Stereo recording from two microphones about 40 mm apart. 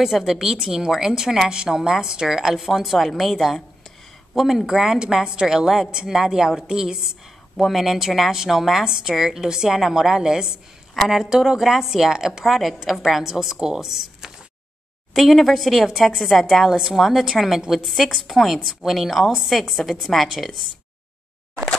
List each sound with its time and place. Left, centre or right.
0.0 s a woman's voice: centre
12.4 s a woman's voice: centre